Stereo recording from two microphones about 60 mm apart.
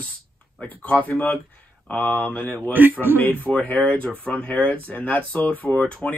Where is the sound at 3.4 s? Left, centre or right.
Left.